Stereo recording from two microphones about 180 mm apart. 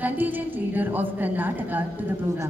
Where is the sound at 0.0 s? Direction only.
10° right (ahead or behind).